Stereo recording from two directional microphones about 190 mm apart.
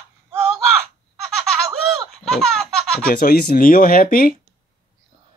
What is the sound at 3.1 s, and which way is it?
Speech, 50° left (ahead or behind).